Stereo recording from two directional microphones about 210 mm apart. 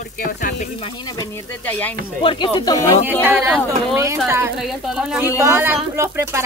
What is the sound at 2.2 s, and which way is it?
Speech, 20° left (ahead or behind).